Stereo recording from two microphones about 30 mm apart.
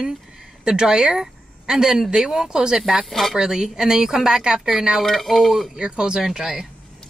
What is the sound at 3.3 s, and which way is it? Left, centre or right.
Speech, right.